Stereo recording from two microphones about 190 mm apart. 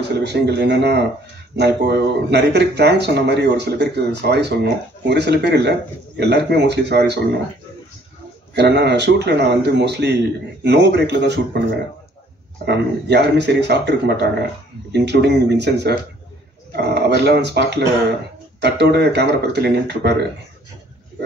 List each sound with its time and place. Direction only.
0.1 s speech: 65° right (ahead or behind)
8.5 s speech: 65° right (ahead or behind)
12.6 s speech: 60° right (ahead or behind)